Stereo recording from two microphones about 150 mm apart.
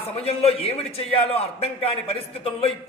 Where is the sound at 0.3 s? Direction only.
40° left (ahead or behind).